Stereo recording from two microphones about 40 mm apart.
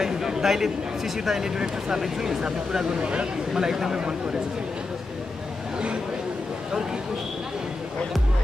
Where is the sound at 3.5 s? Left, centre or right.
Centre.